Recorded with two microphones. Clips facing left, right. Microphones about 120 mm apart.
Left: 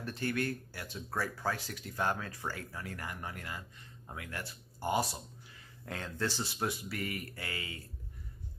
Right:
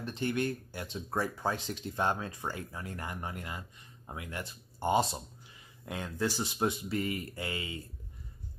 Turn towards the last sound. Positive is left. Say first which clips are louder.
# right 5 dB
turn(degrees=-20)  # may be behind; listen again after turning